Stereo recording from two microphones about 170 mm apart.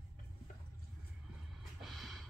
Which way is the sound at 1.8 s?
Centre (ahead or behind).